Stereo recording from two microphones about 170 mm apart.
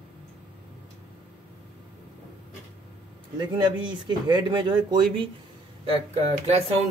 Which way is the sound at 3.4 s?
25° right (ahead or behind).